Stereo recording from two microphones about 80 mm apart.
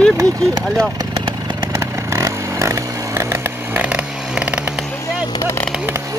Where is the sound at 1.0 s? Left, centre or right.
Right.